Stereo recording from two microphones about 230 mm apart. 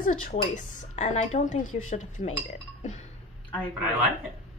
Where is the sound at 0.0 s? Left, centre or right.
Left.